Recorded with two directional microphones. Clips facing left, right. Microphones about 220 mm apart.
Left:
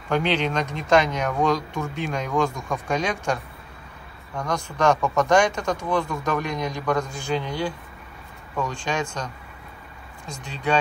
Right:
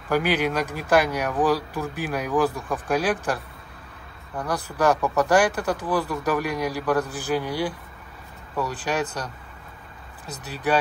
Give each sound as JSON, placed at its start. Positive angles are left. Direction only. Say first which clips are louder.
{"t": 0.1, "sound": "a man's voice", "louder": "even", "side_deg": -10}
{"t": 4.7, "sound": "a man's voice", "louder": "even", "side_deg": -5}
{"t": 10.4, "sound": "a man's voice", "louder": "right 1 dB", "side_deg": -5}